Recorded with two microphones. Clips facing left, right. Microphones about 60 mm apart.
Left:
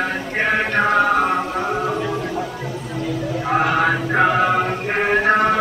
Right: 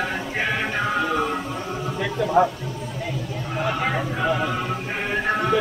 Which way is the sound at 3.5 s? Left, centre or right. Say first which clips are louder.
Left 7 dB; left.